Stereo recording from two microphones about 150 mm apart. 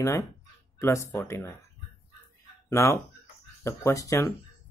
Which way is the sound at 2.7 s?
20° left (ahead or behind).